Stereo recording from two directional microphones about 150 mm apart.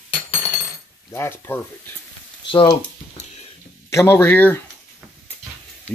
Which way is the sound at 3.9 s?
20° left (ahead or behind).